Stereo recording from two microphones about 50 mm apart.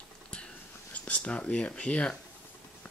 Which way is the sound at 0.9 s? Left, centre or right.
Left.